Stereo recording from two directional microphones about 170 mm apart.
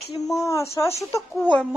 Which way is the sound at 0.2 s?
20° left (ahead or behind).